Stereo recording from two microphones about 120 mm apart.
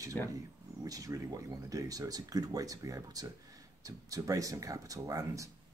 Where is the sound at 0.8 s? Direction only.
25° right (ahead or behind).